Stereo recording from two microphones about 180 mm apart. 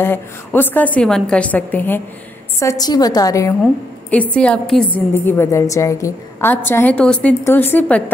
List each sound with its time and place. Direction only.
0.0 s a woman's voice: 10° left (ahead or behind)
3.6 s a woman's voice: 5° left (ahead or behind)